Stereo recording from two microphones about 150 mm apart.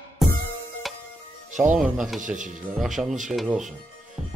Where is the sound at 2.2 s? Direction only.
55° right (ahead or behind).